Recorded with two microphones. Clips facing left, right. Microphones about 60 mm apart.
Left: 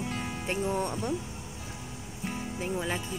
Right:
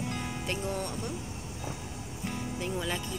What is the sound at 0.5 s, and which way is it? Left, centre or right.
Speech, left.